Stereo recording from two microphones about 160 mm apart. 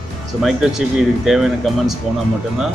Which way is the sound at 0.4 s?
Centre (ahead or behind).